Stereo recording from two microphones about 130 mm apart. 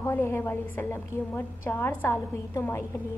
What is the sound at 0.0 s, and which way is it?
A woman's voice, 20° left (ahead or behind).